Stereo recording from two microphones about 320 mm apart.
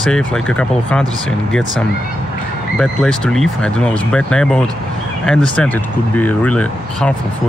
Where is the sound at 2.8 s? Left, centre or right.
Centre.